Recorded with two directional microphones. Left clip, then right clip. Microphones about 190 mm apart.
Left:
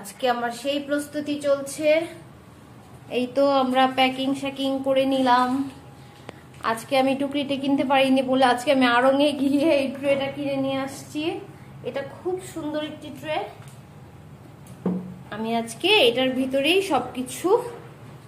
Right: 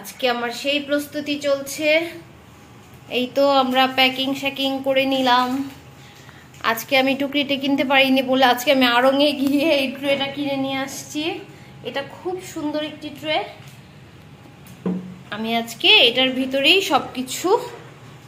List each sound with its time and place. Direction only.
0.0 s a woman's voice: 15° right (ahead or behind)
3.1 s a woman's voice: centre (ahead or behind)
6.6 s a woman's voice: centre (ahead or behind)
12.5 s a woman's voice: 15° right (ahead or behind)
14.8 s a sound: 5° left (ahead or behind)
15.8 s a woman's voice: 5° left (ahead or behind)